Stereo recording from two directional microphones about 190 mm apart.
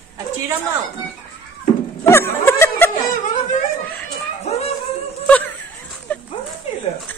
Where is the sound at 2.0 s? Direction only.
15° left (ahead or behind).